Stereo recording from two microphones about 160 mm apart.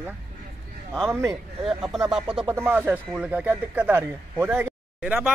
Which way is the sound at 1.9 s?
5° right (ahead or behind).